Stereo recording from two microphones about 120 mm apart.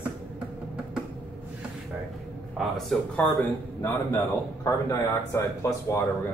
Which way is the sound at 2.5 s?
Centre (ahead or behind).